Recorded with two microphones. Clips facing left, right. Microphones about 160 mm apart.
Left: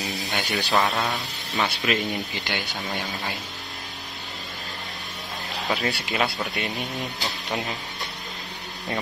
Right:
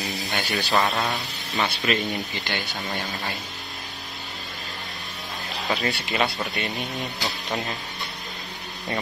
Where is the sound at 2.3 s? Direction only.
15° left (ahead or behind).